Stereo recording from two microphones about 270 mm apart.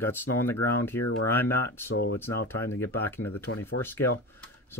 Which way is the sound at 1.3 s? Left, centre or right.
Centre.